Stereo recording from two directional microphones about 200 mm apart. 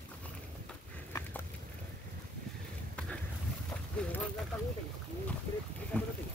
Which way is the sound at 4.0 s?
5° left (ahead or behind).